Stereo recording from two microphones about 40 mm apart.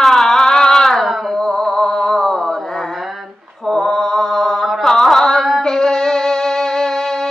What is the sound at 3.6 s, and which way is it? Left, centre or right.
Mantra, centre.